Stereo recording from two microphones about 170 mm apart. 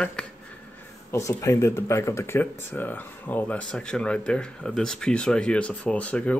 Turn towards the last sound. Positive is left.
turn(degrees=10)  # may be behind; listen again after turning